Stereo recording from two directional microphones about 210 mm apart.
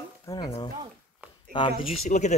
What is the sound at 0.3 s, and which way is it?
Speech, 15° left (ahead or behind).